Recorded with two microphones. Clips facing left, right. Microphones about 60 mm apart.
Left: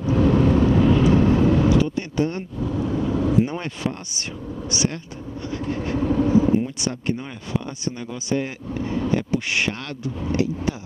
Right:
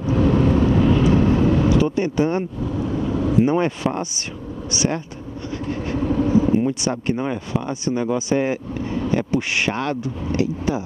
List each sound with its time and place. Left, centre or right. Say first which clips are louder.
0.0 s vehicle: even; right
1.9 s speech: right 4 dB; centre
2.7 s vehicle: left 1 dB; right
3.4 s speech: right 8 dB; centre
6.0 s vehicle: even; right
6.7 s speech: right 4 dB; centre